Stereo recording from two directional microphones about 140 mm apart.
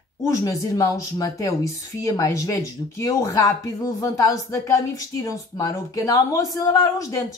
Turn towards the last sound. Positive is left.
turn(degrees=20)  # may be behind; listen again after turning